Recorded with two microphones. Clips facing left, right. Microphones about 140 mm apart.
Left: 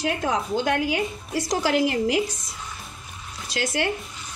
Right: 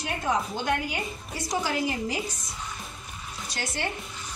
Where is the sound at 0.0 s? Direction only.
90° left.